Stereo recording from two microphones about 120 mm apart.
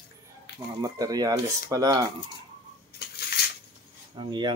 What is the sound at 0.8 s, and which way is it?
Speech, 30° right (ahead or behind).